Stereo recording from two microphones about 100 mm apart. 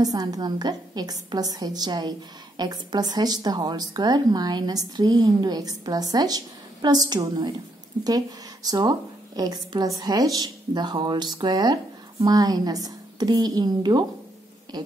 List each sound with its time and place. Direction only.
0.0 s a woman's voice: 40° right (ahead or behind)
8.6 s a woman's voice: 40° right (ahead or behind)